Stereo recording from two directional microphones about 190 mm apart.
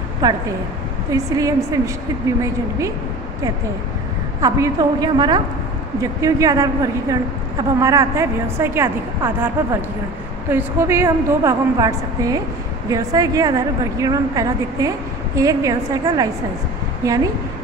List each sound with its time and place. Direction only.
0.2 s a woman's voice: 20° right (ahead or behind)
4.4 s a woman's voice: 20° right (ahead or behind)